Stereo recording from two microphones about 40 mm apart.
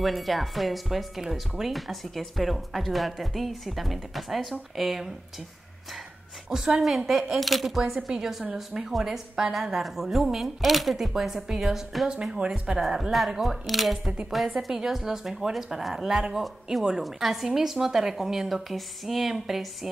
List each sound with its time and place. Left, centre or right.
0.0 s speech: centre
6.5 s speech: centre
12.1 s speech: right
12.8 s speech: centre